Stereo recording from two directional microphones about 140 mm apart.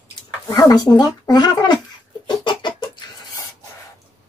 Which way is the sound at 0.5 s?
25° left (ahead or behind).